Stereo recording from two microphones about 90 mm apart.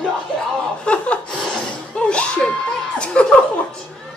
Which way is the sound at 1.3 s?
10° left (ahead or behind).